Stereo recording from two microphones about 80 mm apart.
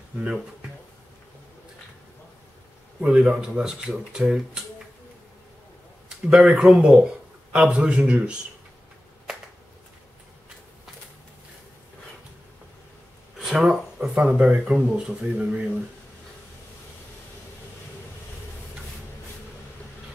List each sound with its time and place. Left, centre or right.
3.0 s speech: centre
6.0 s speech: centre
13.4 s a sound: centre
14.1 s speech: centre